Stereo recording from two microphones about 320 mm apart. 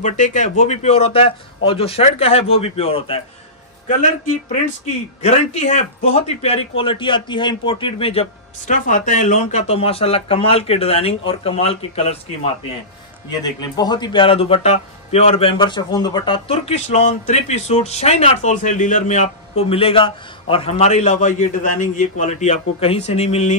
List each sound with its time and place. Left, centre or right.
0.0 s a man's voice: left
5.2 s a man's voice: left
13.3 s a man's voice: centre